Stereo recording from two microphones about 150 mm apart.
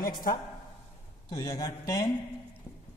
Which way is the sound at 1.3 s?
25° left (ahead or behind).